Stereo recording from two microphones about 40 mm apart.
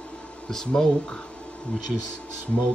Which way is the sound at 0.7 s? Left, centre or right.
Centre.